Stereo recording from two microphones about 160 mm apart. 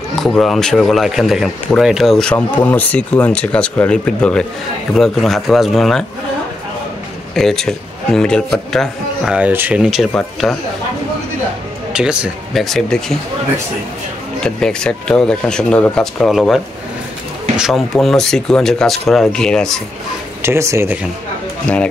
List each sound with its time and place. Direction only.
0.1 s speech: centre (ahead or behind)
7.3 s speech: 5° left (ahead or behind)
11.9 s speech: 5° right (ahead or behind)
14.4 s speech: 5° left (ahead or behind)
20.4 s speech: 15° right (ahead or behind)